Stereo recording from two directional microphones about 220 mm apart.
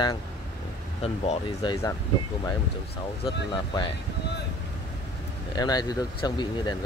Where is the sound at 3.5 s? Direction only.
20° left (ahead or behind).